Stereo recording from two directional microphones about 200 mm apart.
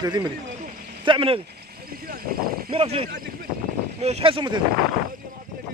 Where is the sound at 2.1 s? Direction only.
45° right (ahead or behind).